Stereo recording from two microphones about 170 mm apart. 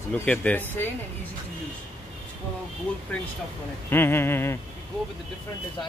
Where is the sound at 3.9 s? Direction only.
15° left (ahead or behind).